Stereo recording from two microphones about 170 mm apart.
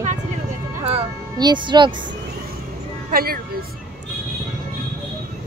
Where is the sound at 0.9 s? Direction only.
25° right (ahead or behind).